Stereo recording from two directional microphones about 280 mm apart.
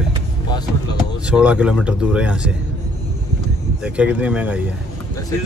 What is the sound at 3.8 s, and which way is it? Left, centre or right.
Speech, centre.